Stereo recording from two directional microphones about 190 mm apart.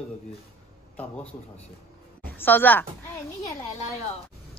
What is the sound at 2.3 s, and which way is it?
Speech, 10° left (ahead or behind).